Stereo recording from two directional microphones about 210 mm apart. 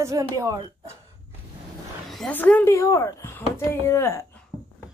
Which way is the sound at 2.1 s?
5° left (ahead or behind).